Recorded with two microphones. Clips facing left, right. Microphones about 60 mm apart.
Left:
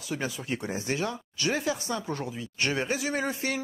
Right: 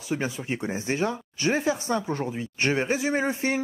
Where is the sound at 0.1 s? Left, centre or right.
Right.